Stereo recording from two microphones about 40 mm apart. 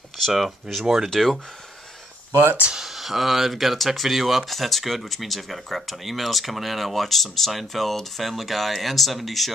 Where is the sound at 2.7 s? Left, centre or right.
Centre.